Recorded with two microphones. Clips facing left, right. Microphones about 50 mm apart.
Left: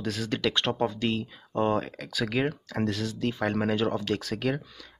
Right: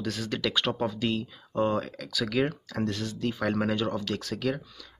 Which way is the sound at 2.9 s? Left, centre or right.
Centre.